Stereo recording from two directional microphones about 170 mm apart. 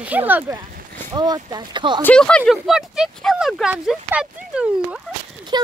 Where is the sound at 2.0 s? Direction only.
5° left (ahead or behind).